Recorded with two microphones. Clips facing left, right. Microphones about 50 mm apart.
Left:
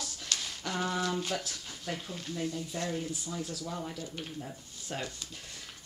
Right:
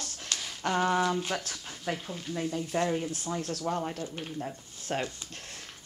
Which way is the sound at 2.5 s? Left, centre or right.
Right.